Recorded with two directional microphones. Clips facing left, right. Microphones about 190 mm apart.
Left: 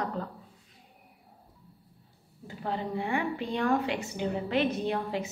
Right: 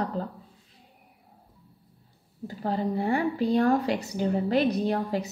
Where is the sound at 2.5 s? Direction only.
40° right (ahead or behind).